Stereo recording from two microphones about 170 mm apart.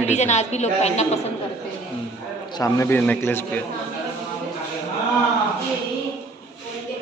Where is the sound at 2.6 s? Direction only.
20° left (ahead or behind).